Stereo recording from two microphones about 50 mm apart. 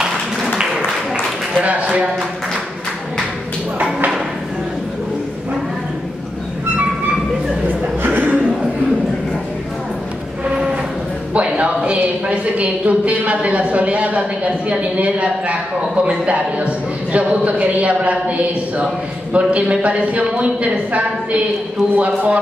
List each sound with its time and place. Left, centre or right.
1.6 s speech: right
3.7 s a sound: right
7.6 s chuckle: right
10.4 s train: right
11.3 s speech: right